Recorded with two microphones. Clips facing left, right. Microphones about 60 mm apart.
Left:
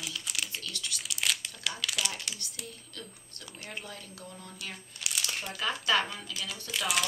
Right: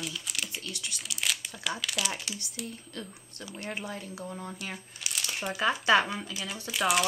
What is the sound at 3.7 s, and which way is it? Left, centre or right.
Speech, right.